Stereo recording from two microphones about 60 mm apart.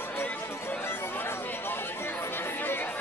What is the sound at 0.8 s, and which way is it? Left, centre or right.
Chatter, left.